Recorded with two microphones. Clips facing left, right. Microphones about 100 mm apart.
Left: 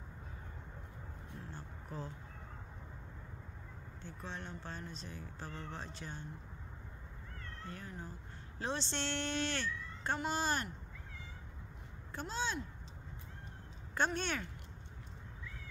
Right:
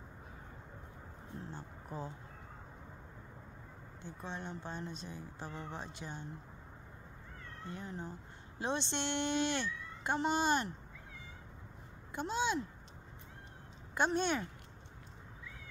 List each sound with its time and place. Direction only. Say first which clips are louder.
1.4 s a sound: right 2 dB; 15° right (ahead or behind)
4.0 s speech: right 3 dB; 15° right (ahead or behind)
7.6 s speech: right 4 dB; 20° right (ahead or behind)
12.2 s speech: right 4 dB; 15° right (ahead or behind)
13.9 s speech: right 3 dB; 15° right (ahead or behind)